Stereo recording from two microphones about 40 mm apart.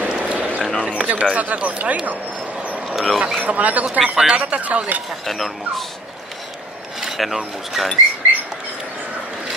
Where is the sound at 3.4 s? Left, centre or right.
Right.